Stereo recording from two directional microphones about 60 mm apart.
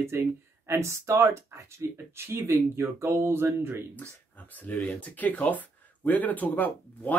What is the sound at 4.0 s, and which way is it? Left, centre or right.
Speech, left.